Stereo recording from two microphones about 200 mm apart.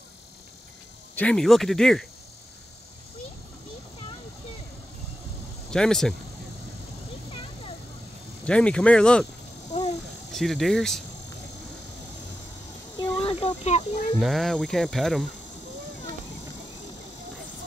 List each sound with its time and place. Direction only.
1.1 s speech: 5° left (ahead or behind)
5.7 s speech: 5° left (ahead or behind)
8.5 s speech: 5° left (ahead or behind)
9.7 s a sound: 35° left (ahead or behind)
10.3 s speech: centre (ahead or behind)
13.2 s speech: 30° left (ahead or behind)
14.1 s speech: centre (ahead or behind)